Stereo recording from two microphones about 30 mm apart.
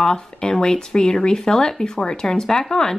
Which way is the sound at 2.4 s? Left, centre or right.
Centre.